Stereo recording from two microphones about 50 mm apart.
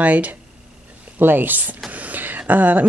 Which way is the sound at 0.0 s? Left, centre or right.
Right.